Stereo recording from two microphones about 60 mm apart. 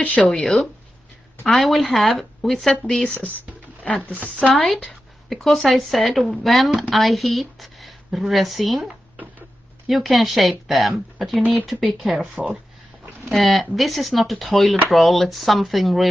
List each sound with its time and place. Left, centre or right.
0.2 s speech: centre
1.5 s speech: centre
3.0 s a woman's voice: left
4.6 s speech: centre